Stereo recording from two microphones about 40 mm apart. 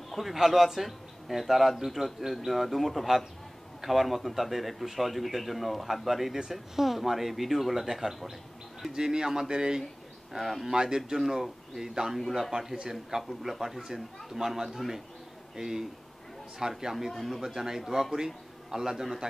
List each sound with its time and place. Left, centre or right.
0.2 s speech: centre
17.1 s a man's voice: centre